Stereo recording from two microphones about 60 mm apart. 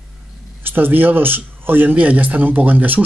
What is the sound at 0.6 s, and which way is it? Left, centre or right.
Speech, right.